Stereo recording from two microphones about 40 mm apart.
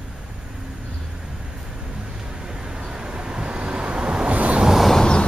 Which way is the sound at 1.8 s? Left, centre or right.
Centre.